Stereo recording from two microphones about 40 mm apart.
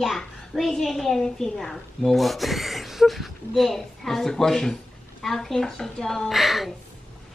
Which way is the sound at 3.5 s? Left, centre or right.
Centre.